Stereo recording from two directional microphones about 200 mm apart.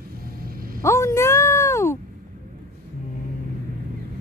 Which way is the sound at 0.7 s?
15° left (ahead or behind).